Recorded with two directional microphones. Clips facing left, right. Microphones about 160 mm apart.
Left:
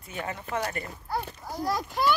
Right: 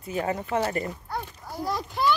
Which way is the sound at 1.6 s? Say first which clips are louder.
Left 1 dB; centre (ahead or behind).